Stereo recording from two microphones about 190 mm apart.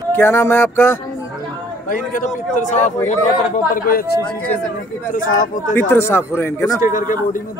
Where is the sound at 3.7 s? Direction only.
50° left (ahead or behind).